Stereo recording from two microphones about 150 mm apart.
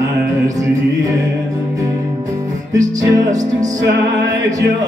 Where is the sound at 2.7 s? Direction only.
20° right (ahead or behind).